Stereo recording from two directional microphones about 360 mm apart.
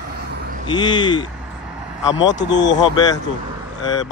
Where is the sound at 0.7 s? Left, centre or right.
Centre.